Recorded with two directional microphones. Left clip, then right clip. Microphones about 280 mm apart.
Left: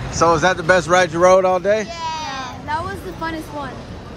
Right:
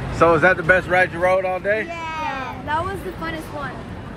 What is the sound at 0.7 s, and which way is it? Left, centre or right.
Speech, left.